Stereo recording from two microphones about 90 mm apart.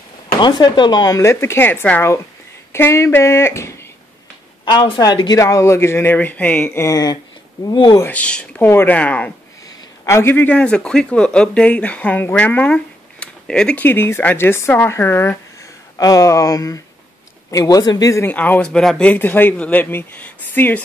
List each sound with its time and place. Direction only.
0.4 s speech: 55° left (ahead or behind)
1.3 s speech: 25° left (ahead or behind)
5.0 s speech: 50° left (ahead or behind)
5.4 s speech: 35° left (ahead or behind); by 6.7 s 15° left (ahead or behind)
6.7 s speech: 30° left (ahead or behind)
7.6 s speech: 55° left (ahead or behind)
8.0 s speech: 15° left (ahead or behind)
10.0 s speech: 30° left (ahead or behind); by 13.8 s 10° left (ahead or behind)
13.8 s speech: 25° left (ahead or behind)
16.0 s speech: 40° left (ahead or behind)
18.2 s speech: 20° left (ahead or behind)
18.7 s speech: 5° left (ahead or behind)
19.0 s speech: 20° left (ahead or behind)